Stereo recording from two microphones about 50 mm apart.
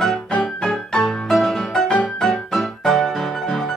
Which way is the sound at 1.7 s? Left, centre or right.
Centre.